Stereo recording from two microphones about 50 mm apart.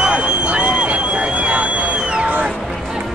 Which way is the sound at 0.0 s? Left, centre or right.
Right.